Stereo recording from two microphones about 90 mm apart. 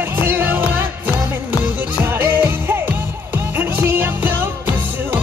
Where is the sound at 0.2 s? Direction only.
25° right (ahead or behind).